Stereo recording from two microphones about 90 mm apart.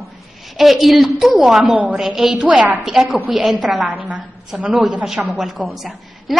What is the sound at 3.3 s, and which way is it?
Speech, centre (ahead or behind).